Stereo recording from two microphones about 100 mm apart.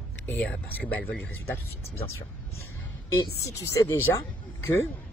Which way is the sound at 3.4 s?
30° left (ahead or behind).